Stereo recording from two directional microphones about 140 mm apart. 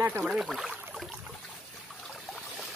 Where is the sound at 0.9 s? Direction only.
Centre (ahead or behind).